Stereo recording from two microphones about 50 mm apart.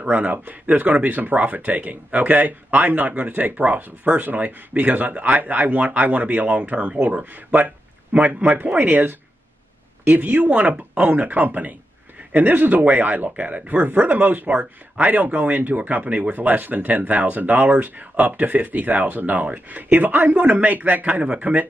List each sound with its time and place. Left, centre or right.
0.1 s speech: right